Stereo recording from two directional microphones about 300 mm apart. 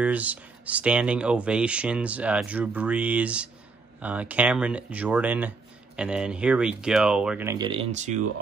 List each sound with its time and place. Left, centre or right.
0.0 s speech: centre; by 8.2 s right